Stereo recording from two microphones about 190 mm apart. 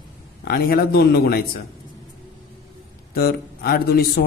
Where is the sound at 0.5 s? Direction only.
55° left (ahead or behind).